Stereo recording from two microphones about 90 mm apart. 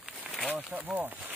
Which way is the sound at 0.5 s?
15° right (ahead or behind).